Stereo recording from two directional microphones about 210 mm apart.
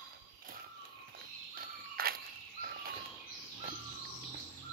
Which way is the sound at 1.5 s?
45° right (ahead or behind).